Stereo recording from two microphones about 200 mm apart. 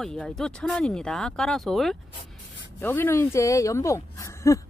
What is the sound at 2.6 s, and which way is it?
Speech, 10° left (ahead or behind).